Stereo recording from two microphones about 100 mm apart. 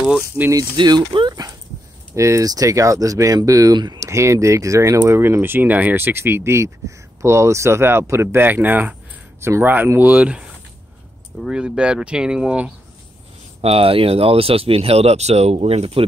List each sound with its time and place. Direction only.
0.4 s speech: 15° right (ahead or behind)
0.7 s speech: 50° right (ahead or behind)
2.1 s speech: 30° right (ahead or behind); by 4.1 s 45° right (ahead or behind)
4.1 s speech: 30° right (ahead or behind); by 12.7 s 10° right (ahead or behind)
13.6 s speech: 80° right